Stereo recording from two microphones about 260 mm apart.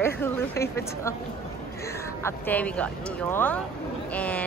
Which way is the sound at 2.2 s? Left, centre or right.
Centre.